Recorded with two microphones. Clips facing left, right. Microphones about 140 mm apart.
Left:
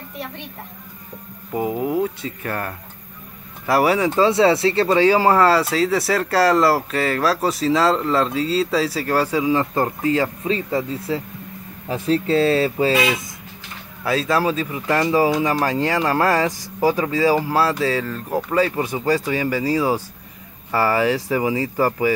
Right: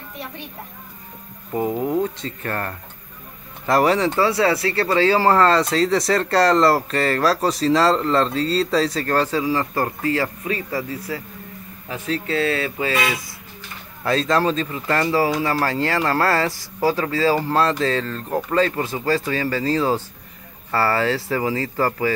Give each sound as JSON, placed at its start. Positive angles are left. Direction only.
{"t": 1.5, "sound": "speech", "side_deg": 5}
{"t": 4.3, "sound": "speech", "side_deg": 25}
{"t": 14.0, "sound": "speech", "side_deg": 5}